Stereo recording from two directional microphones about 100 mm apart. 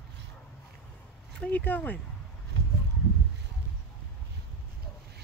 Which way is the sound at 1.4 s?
15° left (ahead or behind).